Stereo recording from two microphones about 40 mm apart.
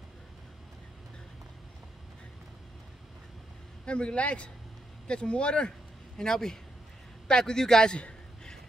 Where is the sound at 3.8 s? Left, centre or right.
Left.